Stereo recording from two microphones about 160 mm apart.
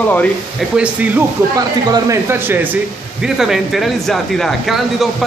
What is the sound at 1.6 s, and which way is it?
Speech, 20° right (ahead or behind).